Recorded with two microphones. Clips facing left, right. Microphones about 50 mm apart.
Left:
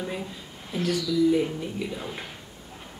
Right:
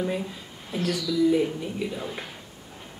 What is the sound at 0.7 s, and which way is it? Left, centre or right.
Speech, centre.